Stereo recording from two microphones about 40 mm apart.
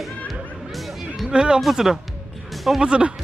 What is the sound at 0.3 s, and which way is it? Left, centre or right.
Music, centre.